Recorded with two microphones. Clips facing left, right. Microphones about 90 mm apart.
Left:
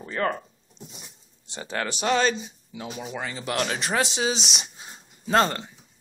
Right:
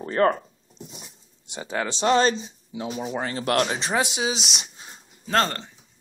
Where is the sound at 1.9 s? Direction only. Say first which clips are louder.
Right 3 dB; 30° right (ahead or behind).